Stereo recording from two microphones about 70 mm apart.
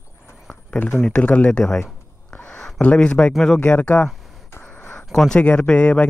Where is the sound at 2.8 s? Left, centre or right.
Centre.